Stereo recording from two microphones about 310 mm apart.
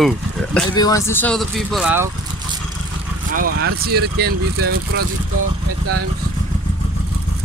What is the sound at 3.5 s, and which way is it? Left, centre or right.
Speech, right.